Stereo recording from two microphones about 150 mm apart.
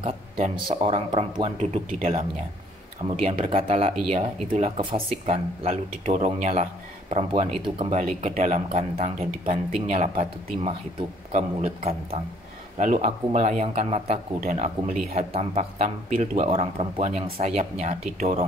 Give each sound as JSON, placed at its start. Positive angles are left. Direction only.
{"t": 0.0, "sound": "speech", "side_deg": -35}
{"t": 3.2, "sound": "speech", "side_deg": -40}
{"t": 7.6, "sound": "speech", "side_deg": -40}
{"t": 8.0, "sound": "speech", "side_deg": -50}
{"t": 14.4, "sound": "speech", "side_deg": -60}
{"t": 15.1, "sound": "speech", "side_deg": -45}
{"t": 17.4, "sound": "speech", "side_deg": -50}